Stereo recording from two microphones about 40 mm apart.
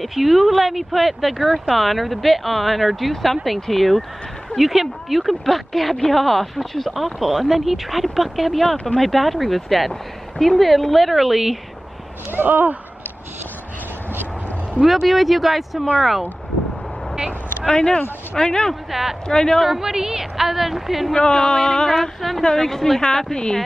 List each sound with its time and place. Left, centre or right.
0.0 s speech: centre
12.3 s speech: right
14.8 s speech: centre
17.6 s speech: centre
18.9 s a woman's voice: centre
19.2 s speech: centre
19.6 s a woman's voice: centre
21.1 s speech: centre